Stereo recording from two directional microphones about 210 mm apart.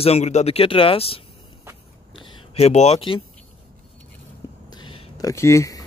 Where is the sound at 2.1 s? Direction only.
25° left (ahead or behind).